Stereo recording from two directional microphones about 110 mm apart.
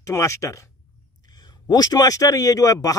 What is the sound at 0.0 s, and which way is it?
Speech, 25° left (ahead or behind).